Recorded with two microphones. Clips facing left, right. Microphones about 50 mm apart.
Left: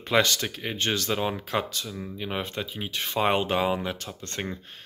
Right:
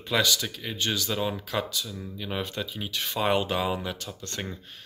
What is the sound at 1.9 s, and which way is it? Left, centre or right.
Speech, left.